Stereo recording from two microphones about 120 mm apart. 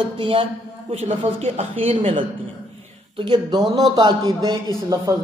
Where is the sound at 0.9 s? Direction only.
65° right (ahead or behind).